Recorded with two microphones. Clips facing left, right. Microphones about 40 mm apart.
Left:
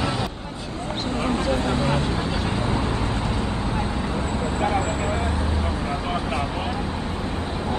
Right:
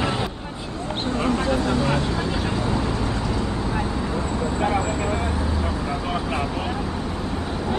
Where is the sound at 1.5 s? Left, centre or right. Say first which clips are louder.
Right 1 dB; left.